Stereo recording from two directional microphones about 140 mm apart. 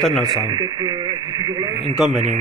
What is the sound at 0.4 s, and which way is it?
Speech, 30° right (ahead or behind).